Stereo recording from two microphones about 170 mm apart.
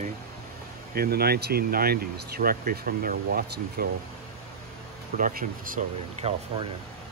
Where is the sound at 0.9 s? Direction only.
65° right (ahead or behind).